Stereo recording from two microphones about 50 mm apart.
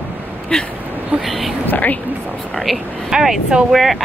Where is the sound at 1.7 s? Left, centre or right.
Left.